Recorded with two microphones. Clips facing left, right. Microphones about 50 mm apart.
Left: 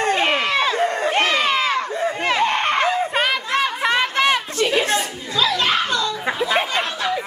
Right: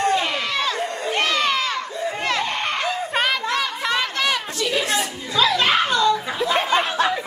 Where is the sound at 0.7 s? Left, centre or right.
Left.